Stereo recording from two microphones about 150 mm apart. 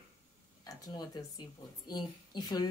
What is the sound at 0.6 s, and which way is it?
Speech, 25° left (ahead or behind).